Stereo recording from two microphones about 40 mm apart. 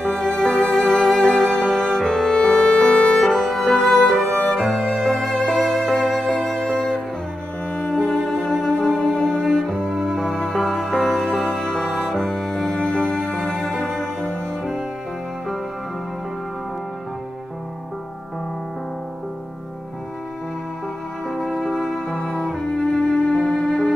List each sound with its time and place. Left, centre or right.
0.0 s music: centre
3.2 s music: centre
7.7 s cello: left
21.3 s music: centre